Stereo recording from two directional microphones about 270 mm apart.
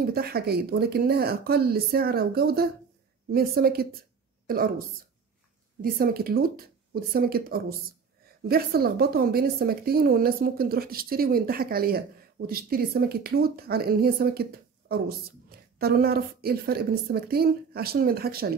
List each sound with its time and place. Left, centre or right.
0.0 s a woman's voice: right
5.8 s a woman's voice: right